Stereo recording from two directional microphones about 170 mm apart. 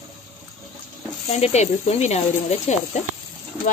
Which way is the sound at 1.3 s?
40° left (ahead or behind).